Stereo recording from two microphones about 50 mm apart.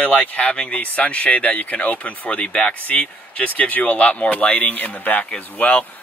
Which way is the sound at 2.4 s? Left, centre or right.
Centre.